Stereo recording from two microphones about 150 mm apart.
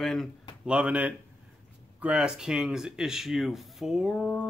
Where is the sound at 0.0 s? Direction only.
5° left (ahead or behind).